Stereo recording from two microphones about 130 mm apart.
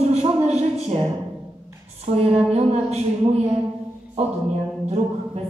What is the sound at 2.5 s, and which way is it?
A woman's voice, 55° right (ahead or behind).